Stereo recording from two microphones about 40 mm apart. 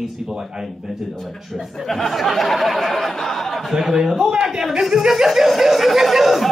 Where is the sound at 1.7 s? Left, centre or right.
Centre.